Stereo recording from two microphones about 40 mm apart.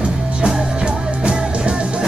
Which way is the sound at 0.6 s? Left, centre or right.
Right.